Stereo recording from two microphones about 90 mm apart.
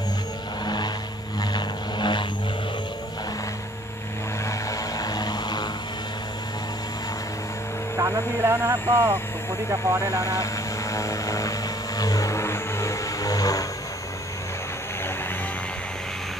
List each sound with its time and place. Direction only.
0.7 s vehicle: 50° left (ahead or behind)
4.5 s vehicle: 40° left (ahead or behind)
8.0 s speech: 35° right (ahead or behind)
10.2 s speech: 35° left (ahead or behind)
12.0 s vehicle: 40° left (ahead or behind)